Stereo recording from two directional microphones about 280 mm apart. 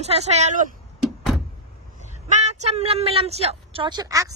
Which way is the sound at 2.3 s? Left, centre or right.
Right.